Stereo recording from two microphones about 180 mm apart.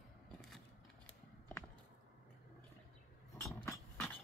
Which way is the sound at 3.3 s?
15° left (ahead or behind).